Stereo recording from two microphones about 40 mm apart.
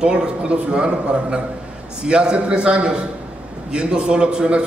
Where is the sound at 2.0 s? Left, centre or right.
Right.